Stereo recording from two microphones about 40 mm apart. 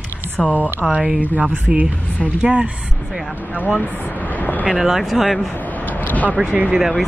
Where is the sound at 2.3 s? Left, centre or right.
Right.